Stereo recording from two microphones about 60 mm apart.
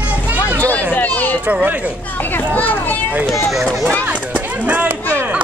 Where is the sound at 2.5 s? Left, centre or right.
Left.